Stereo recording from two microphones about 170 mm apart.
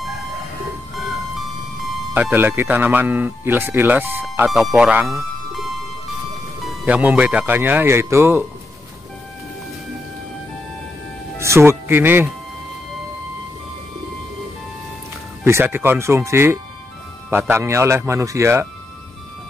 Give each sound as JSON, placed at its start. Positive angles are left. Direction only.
{"t": 2.1, "sound": "speech", "side_deg": -10}
{"t": 4.5, "sound": "speech", "side_deg": 0}
{"t": 6.6, "sound": "speech", "side_deg": -5}
{"t": 11.3, "sound": "speech", "side_deg": -15}
{"t": 15.4, "sound": "speech", "side_deg": -15}